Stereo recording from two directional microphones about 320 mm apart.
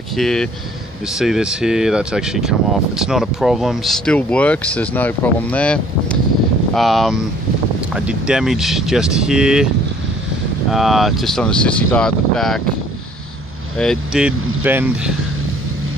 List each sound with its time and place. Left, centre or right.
0.1 s speech: centre
10.7 s speech: centre
13.7 s speech: centre